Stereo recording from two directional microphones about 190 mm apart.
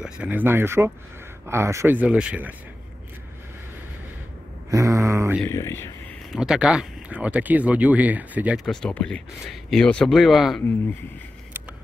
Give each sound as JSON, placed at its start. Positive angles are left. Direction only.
{"t": 0.0, "sound": "speech", "side_deg": -5}
{"t": 4.6, "sound": "mantra", "side_deg": -15}
{"t": 5.5, "sound": "speech", "side_deg": 15}
{"t": 6.3, "sound": "speech", "side_deg": -5}